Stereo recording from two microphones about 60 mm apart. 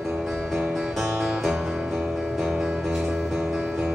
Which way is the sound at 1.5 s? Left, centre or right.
Centre.